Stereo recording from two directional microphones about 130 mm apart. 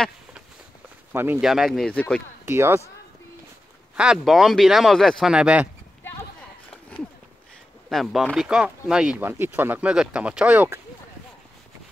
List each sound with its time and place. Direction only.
1.1 s speech: 15° right (ahead or behind)
1.4 s speech: centre (ahead or behind)
2.4 s speech: 20° right (ahead or behind)
3.9 s speech: 5° right (ahead or behind)
7.9 s speech: centre (ahead or behind)